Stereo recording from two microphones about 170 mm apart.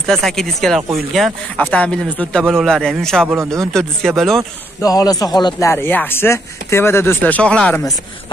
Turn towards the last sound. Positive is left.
turn(degrees=5)  # may be behind; listen again after turning